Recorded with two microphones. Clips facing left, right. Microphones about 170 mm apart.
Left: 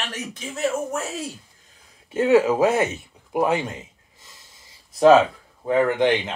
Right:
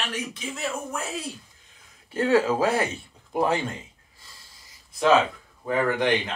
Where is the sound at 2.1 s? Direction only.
20° left (ahead or behind).